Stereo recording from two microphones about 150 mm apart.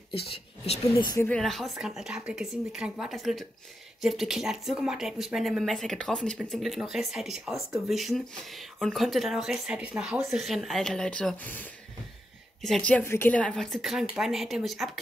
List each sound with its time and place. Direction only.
0.1 s speech: 40° left (ahead or behind)
1.3 s speech: centre (ahead or behind)